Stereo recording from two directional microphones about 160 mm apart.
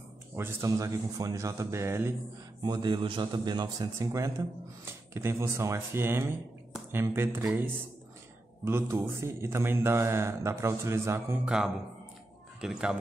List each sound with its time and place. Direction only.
0.4 s a man's voice: 15° right (ahead or behind)
2.6 s a man's voice: 25° right (ahead or behind); by 12.9 s 5° right (ahead or behind)